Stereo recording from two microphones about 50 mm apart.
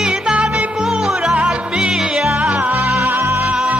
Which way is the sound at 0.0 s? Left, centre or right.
Centre.